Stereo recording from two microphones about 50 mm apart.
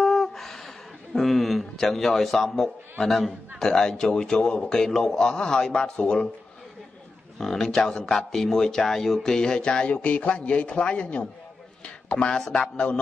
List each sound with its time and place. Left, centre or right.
0.0 s a sound: centre
1.1 s speech: centre
7.3 s speech: centre